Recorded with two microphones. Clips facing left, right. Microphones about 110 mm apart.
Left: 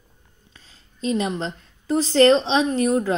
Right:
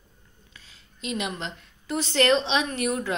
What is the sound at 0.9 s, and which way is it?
A woman's voice, 35° left (ahead or behind).